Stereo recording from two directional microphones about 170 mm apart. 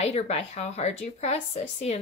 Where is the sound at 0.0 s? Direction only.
40° left (ahead or behind).